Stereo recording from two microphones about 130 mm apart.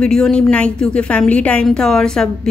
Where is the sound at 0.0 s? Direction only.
5° left (ahead or behind).